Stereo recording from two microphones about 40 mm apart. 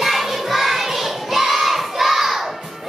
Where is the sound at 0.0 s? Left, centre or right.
Centre.